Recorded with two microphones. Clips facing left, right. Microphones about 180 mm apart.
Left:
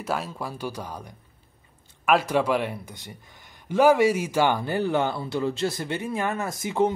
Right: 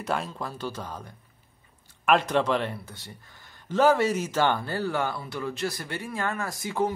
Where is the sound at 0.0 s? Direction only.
5° left (ahead or behind).